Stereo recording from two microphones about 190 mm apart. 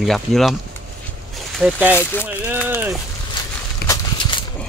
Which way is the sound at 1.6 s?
10° right (ahead or behind).